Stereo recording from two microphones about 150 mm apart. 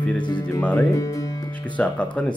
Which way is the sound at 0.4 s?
10° left (ahead or behind).